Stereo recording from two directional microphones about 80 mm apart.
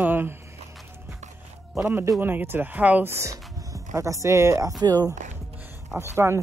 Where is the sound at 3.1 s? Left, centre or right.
Right.